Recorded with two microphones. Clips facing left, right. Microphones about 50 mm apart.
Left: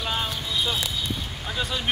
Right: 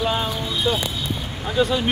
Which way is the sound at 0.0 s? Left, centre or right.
Centre.